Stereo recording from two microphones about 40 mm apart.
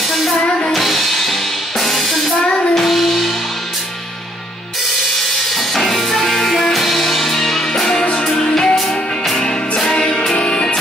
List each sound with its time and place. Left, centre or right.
0.7 s music: centre
1.8 s drum kit: centre
2.7 s music: centre
5.8 s music: centre
7.9 s music: left
8.3 s music: centre